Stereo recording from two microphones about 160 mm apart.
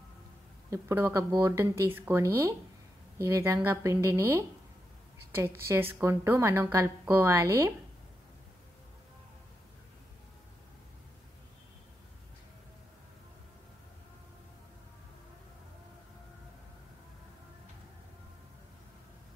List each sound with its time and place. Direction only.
0.7 s a woman's voice: 15° right (ahead or behind)
5.7 s a woman's voice: 15° right (ahead or behind)